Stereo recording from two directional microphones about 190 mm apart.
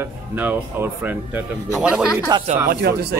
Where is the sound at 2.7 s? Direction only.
55° right (ahead or behind).